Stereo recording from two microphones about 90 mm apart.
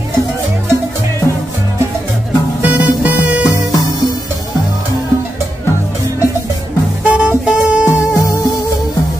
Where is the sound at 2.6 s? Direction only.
20° right (ahead or behind).